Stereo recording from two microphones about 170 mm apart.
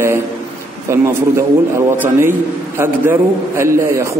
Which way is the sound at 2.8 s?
15° right (ahead or behind).